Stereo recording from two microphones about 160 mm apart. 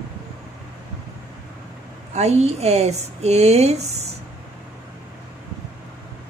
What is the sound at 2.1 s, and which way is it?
Speech, 45° right (ahead or behind).